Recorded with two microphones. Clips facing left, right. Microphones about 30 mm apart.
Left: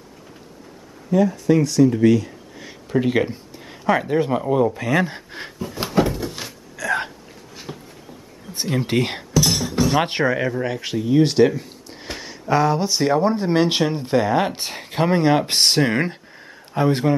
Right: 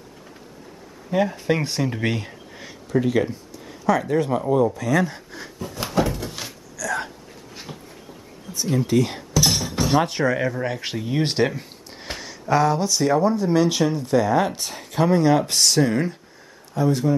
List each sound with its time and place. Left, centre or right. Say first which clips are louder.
1.1 s speech: left 4 dB; right
2.9 s a sound: left 1 dB; left
4.0 s speech: left 1 dB; centre
4.7 s speech: left 1 dB; left
5.9 s door: left 3 dB; centre
6.8 s a sound: left 4 dB; left
7.5 s a sound: left 3 dB; centre
8.5 s speech: right 1 dB; left
9.4 s cutlery: left 2 dB; centre
9.9 s speech: right 3 dB; left
10.2 s speech: left 1 dB; centre
10.8 s speech: left 6 dB; centre
12.2 s a sound: left 1 dB; centre
12.8 s speech: left 1 dB; left